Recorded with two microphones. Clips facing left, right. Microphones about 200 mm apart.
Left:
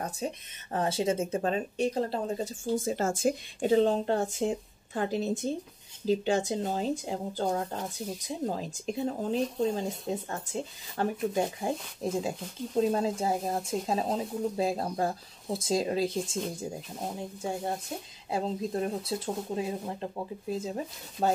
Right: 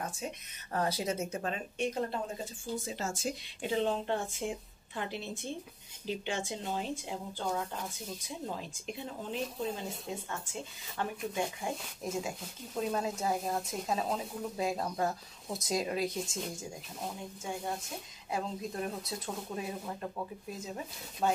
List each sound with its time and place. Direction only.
0.0 s speech: 30° left (ahead or behind)
2.8 s speech: 50° left (ahead or behind); by 21.3 s 30° left (ahead or behind)